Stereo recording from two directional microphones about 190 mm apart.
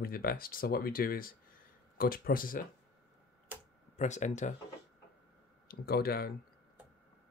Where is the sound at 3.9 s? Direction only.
40° left (ahead or behind).